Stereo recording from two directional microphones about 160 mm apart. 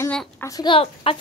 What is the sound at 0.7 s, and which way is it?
Speech, 35° left (ahead or behind).